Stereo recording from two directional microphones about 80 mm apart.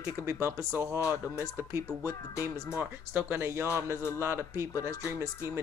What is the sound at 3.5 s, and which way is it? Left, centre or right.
Speech, right.